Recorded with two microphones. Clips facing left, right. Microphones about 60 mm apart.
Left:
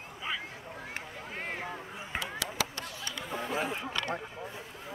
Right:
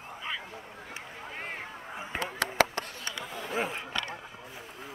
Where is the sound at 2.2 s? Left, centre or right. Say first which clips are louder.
Right 7 dB; right.